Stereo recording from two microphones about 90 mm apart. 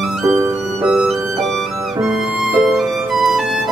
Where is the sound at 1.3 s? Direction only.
Centre (ahead or behind).